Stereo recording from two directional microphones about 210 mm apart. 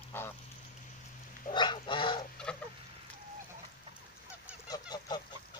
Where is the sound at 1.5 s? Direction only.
20° left (ahead or behind).